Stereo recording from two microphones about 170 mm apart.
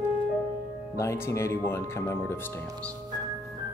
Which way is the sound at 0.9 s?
15° left (ahead or behind).